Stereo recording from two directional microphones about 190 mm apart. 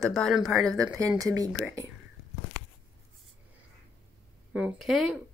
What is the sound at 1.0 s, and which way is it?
Speech, 20° right (ahead or behind).